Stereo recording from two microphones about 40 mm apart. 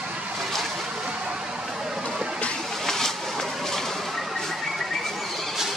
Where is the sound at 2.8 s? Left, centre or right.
Centre.